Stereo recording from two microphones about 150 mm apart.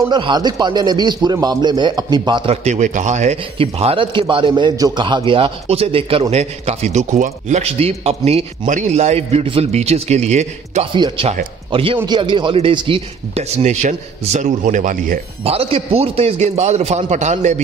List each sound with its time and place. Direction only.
0.1 s a man's voice: 30° right (ahead or behind)
2.5 s speech: 50° right (ahead or behind)
3.5 s a man's voice: 40° right (ahead or behind)
8.6 s a man's voice: 55° right (ahead or behind)
15.4 s speech: 40° right (ahead or behind)